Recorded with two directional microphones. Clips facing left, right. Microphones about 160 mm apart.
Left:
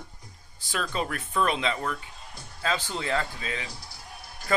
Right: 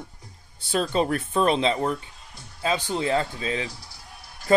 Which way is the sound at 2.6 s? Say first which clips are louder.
Right 5 dB; 15° right (ahead or behind).